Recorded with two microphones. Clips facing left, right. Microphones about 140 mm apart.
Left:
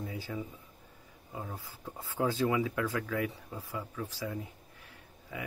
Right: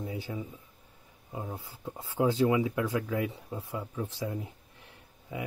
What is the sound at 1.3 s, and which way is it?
Speech, 20° right (ahead or behind).